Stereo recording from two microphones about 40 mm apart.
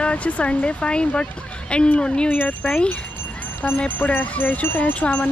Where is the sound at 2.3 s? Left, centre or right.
Left.